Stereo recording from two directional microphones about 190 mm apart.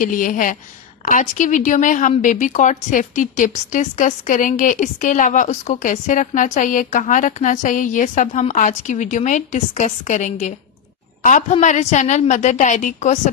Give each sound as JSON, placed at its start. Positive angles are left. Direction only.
{"t": 0.0, "sound": "a woman's voice", "side_deg": 45}